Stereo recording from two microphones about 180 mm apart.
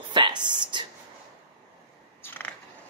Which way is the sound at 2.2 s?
10° left (ahead or behind).